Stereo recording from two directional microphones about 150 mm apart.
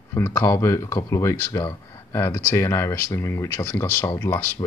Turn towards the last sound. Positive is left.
turn(degrees=15)  # may be behind; listen again after turning